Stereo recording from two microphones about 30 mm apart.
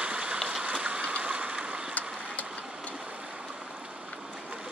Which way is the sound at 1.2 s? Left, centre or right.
Right.